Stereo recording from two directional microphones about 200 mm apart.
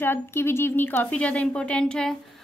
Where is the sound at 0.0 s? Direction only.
10° left (ahead or behind).